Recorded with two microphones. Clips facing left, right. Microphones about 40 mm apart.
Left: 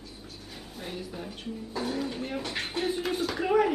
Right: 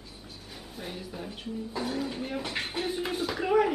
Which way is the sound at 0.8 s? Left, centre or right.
Centre.